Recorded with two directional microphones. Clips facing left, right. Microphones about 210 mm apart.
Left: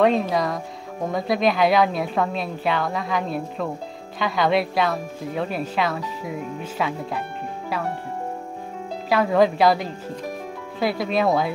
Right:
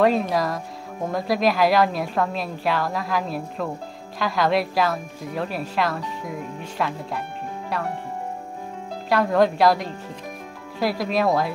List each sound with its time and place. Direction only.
0.0 s speech: centre (ahead or behind)
9.1 s speech: centre (ahead or behind)